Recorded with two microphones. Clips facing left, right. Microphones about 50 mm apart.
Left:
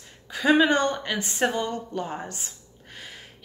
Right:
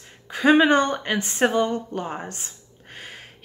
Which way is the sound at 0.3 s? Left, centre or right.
Right.